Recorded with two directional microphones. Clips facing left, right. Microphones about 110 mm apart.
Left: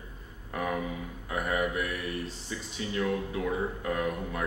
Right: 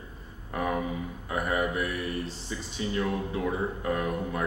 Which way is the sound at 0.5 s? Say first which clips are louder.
Right 2 dB; 30° right (ahead or behind).